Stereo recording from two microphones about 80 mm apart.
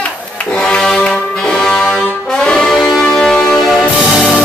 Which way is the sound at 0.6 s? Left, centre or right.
Centre.